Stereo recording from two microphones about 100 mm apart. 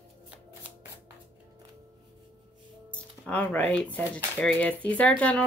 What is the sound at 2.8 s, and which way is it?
Speech, 15° left (ahead or behind).